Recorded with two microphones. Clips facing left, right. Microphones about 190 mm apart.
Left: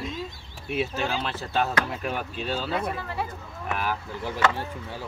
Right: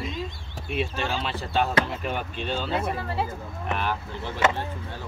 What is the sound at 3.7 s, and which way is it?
Speech, 5° left (ahead or behind).